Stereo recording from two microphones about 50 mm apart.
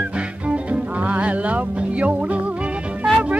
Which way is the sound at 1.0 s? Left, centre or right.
Right.